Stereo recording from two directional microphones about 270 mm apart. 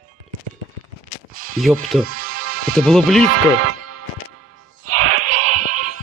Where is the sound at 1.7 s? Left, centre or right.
Centre.